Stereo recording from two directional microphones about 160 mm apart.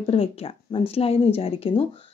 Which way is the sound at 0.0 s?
35° left (ahead or behind).